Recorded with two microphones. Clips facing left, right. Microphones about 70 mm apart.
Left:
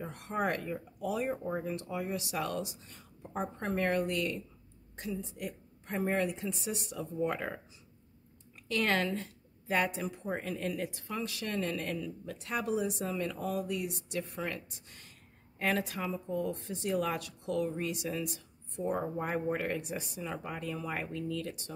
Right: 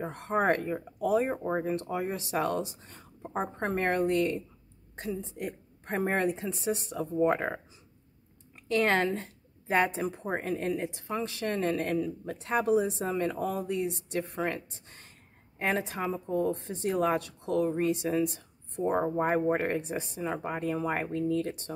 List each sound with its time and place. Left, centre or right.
0.0 s speech: right
8.6 s speech: right